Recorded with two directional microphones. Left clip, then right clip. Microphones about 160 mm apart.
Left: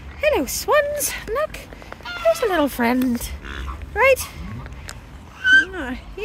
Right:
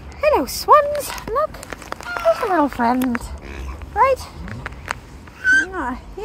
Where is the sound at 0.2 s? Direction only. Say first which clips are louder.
Right 3 dB; 30° left (ahead or behind).